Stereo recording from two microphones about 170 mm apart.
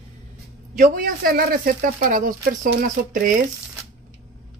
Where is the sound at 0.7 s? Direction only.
55° right (ahead or behind).